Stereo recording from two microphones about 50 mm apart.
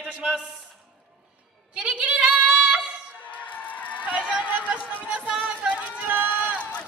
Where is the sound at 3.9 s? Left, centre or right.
Right.